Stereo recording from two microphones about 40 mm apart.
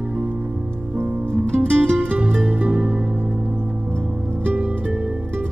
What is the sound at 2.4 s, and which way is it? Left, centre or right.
Music, right.